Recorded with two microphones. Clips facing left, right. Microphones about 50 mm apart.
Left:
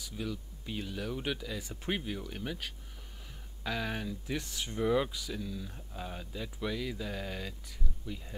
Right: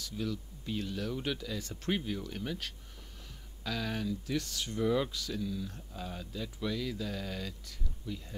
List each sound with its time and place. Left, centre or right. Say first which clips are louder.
0.0 s speech: right 2 dB; centre